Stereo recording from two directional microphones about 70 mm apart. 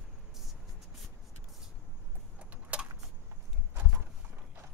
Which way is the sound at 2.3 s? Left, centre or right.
Centre.